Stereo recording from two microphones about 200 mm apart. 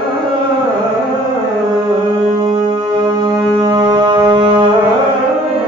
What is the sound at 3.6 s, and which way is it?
Music, 20° right (ahead or behind).